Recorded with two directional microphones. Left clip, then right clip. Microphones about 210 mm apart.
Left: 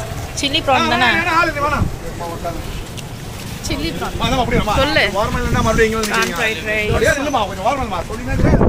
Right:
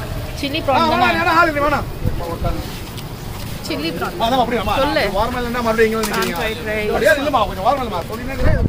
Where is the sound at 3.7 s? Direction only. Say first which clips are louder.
Right 1 dB; 5° left (ahead or behind).